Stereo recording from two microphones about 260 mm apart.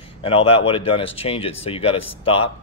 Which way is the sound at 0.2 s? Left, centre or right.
Left.